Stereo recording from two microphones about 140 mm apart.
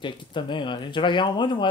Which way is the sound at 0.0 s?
35° left (ahead or behind).